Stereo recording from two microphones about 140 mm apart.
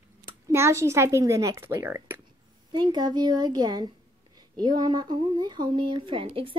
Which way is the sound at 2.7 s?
30° right (ahead or behind).